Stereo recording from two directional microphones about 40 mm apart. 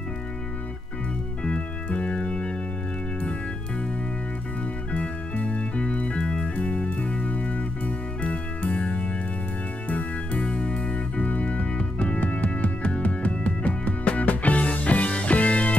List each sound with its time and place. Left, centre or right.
1.4 s organ: left
4.9 s music: left
10.4 s music: left